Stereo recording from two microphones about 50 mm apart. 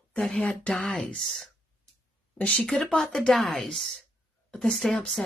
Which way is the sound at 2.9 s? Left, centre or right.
Left.